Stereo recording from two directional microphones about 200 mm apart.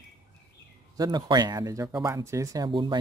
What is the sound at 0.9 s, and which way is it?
Speech, 20° right (ahead or behind).